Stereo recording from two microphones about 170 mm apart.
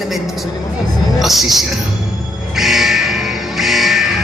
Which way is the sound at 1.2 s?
Centre (ahead or behind).